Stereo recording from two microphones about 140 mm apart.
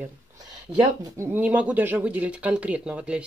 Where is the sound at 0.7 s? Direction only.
20° right (ahead or behind).